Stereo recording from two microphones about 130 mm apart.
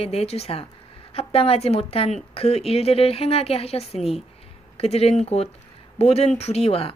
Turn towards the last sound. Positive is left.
turn(degrees=50)  # may be behind; listen again after turning